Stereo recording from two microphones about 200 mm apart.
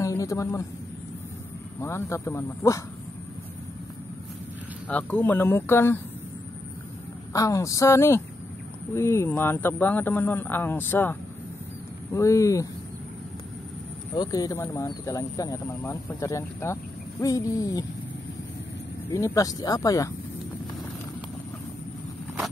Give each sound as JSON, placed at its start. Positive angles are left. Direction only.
{"t": 0.0, "sound": "a man's voice", "side_deg": 15}
{"t": 1.8, "sound": "speech", "side_deg": 15}
{"t": 4.8, "sound": "speech", "side_deg": 10}
{"t": 7.3, "sound": "speech", "side_deg": 15}
{"t": 14.1, "sound": "speech", "side_deg": 20}
{"t": 19.1, "sound": "speech", "side_deg": 15}